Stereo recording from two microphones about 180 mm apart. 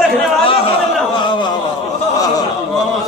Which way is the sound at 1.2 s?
25° left (ahead or behind).